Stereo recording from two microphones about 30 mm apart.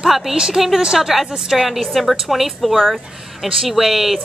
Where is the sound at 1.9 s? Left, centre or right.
Centre.